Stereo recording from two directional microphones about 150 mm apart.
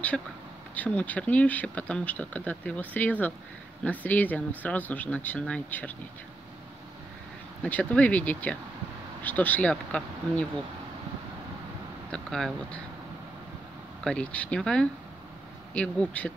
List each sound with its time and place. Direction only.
0.1 s speech: centre (ahead or behind)
0.7 s speech: 10° left (ahead or behind)
7.6 s speech: 10° left (ahead or behind)
12.1 s speech: centre (ahead or behind)
14.0 s speech: 5° left (ahead or behind)